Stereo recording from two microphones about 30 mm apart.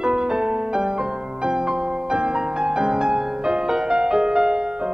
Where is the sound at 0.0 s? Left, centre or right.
Right.